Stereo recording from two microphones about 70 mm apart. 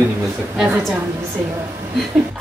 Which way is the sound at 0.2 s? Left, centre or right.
Centre.